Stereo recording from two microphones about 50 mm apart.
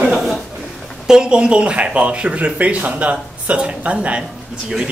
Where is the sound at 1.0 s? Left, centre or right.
Centre.